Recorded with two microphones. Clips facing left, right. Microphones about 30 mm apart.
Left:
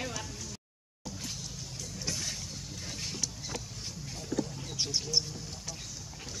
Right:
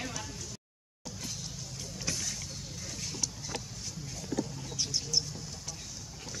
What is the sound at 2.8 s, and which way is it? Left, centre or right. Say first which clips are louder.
Vehicle: left 2 dB; left.